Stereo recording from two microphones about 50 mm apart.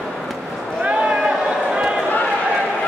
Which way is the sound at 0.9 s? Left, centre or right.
Right.